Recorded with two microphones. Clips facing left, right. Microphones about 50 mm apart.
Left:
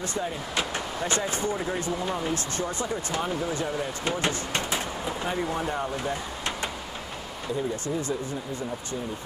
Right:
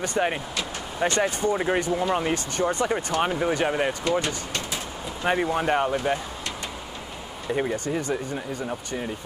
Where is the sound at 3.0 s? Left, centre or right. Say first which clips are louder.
Right 5 dB; right.